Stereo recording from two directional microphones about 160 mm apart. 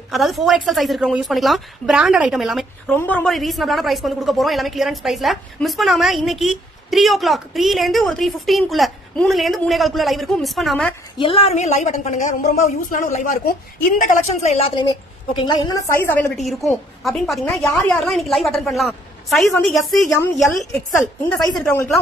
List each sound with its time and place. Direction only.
0.1 s speech: centre (ahead or behind)
3.0 s speech: 10° left (ahead or behind)
11.1 s a woman's voice: 35° left (ahead or behind)
15.3 s a woman's voice: 30° left (ahead or behind)
15.9 s speech: 15° left (ahead or behind)
16.3 s speech: centre (ahead or behind)
21.6 s speech: 15° left (ahead or behind)